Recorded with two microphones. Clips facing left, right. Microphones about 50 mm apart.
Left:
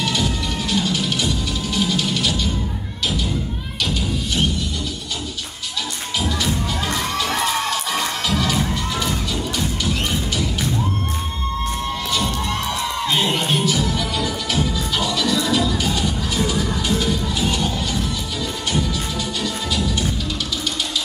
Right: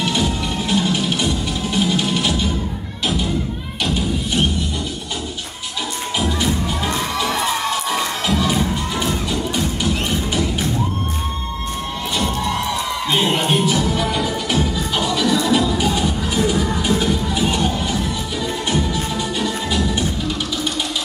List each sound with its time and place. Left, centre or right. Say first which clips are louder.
1.9 s music: right 2 dB; right
13.1 s music: right 3 dB; centre